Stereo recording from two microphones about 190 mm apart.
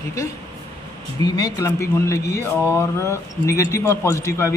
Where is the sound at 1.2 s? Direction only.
20° left (ahead or behind).